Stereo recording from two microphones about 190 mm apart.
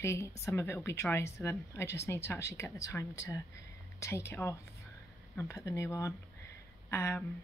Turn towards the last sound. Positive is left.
turn(degrees=15)  # may be behind; listen again after turning